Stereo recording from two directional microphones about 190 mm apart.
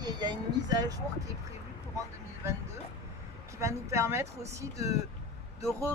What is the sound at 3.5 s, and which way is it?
Speech, 15° right (ahead or behind).